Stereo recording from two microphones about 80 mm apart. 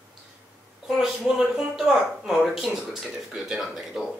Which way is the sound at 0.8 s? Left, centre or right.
Centre.